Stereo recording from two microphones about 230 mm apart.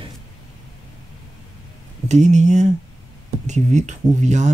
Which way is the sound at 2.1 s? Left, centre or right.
Right.